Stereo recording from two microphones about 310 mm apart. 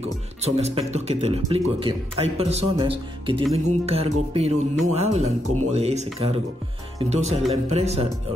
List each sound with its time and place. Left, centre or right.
0.0 s speech: centre